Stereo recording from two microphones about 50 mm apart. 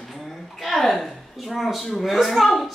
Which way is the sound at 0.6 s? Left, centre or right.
Centre.